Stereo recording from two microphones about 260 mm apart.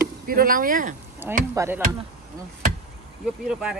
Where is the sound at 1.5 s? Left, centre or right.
Centre.